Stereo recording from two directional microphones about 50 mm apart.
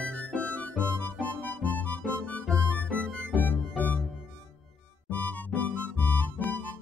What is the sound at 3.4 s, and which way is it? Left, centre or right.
Music, left.